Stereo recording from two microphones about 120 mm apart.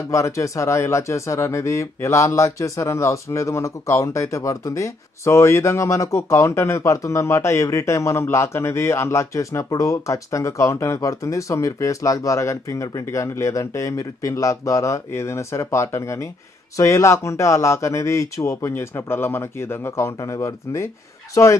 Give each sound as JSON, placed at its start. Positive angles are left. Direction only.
{"t": 0.1, "sound": "speech", "side_deg": 25}